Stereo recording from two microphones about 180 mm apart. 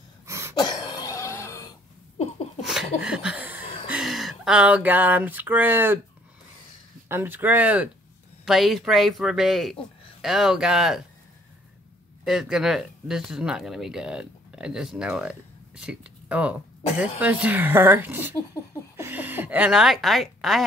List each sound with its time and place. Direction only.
0.3 s throat clearing: 15° right (ahead or behind)
0.6 s cough: 20° left (ahead or behind)
2.6 s a sound: 5° right (ahead or behind)
3.0 s laughter: 5° right (ahead or behind)
3.8 s a sound: 5° right (ahead or behind)
7.1 s speech: 10° right (ahead or behind)
12.3 s speech: centre (ahead or behind)
18.5 s a sound: 15° left (ahead or behind)
18.9 s a woman's voice: 10° right (ahead or behind)